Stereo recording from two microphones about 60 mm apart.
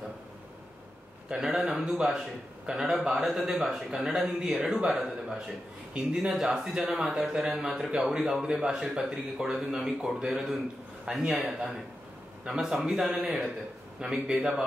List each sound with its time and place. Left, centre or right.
1.3 s a man's voice: centre